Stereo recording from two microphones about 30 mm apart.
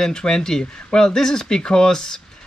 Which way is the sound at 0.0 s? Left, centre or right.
Left.